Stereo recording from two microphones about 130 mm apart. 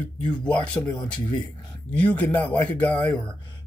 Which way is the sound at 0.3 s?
10° left (ahead or behind).